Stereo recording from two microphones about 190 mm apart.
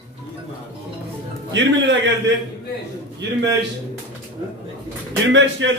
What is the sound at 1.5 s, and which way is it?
Speech, 70° right (ahead or behind).